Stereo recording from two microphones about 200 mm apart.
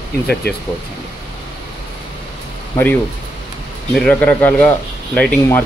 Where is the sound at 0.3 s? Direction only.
55° left (ahead or behind).